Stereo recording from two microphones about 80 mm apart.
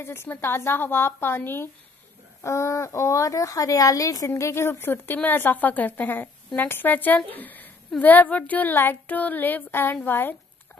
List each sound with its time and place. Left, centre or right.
0.0 s a woman's voice: left
2.4 s a woman's voice: left